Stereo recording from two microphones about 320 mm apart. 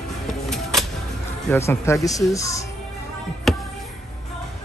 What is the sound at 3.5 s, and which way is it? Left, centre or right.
Music, centre.